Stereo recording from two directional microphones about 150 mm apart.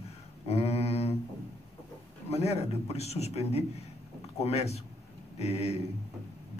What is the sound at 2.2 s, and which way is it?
A man's voice, 45° left (ahead or behind).